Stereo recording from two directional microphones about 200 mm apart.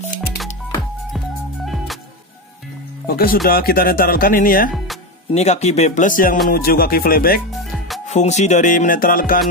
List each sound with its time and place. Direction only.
3.1 s speech: 45° left (ahead or behind)
5.3 s music: 35° left (ahead or behind)
6.5 s speech: 50° left (ahead or behind)
8.1 s music: 35° left (ahead or behind)